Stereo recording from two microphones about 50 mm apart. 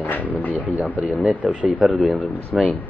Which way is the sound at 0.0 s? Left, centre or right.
Left.